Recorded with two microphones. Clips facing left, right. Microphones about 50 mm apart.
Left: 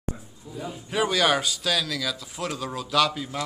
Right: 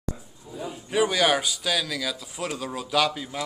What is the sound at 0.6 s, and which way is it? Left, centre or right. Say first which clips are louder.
A man's voice: right 2 dB; centre.